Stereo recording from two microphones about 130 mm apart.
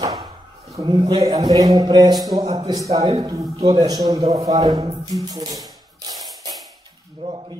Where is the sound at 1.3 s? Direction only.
30° right (ahead or behind).